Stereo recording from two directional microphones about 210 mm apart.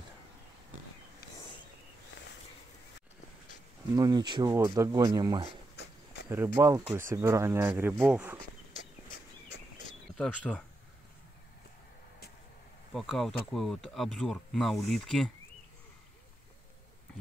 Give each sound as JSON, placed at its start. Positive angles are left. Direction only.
{"t": 3.9, "sound": "speech", "side_deg": -15}
{"t": 8.7, "sound": "a sound", "side_deg": 40}
{"t": 10.1, "sound": "speech", "side_deg": 5}
{"t": 12.9, "sound": "speech", "side_deg": 0}